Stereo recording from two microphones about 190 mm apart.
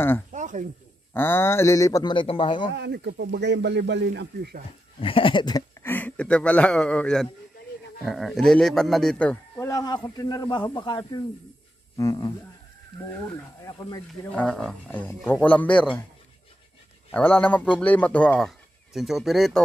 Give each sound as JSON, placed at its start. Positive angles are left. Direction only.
{"t": 0.3, "sound": "a sound", "side_deg": -40}
{"t": 1.1, "sound": "a man's voice", "side_deg": 10}
{"t": 2.7, "sound": "speech", "side_deg": -65}
{"t": 5.0, "sound": "a man's voice", "side_deg": 25}
{"t": 13.6, "sound": "speech", "side_deg": 20}
{"t": 14.3, "sound": "a man's voice", "side_deg": 5}
{"t": 17.1, "sound": "a man's voice", "side_deg": 5}